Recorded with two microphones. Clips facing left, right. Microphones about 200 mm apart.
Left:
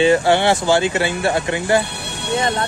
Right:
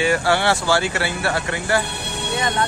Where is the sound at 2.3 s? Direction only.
30° left (ahead or behind).